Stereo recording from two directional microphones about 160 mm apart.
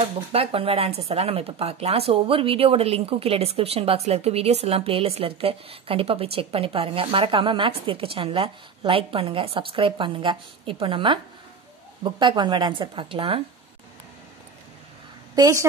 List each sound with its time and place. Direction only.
0.3 s speech: 35° right (ahead or behind)
15.3 s a woman's voice: 25° right (ahead or behind)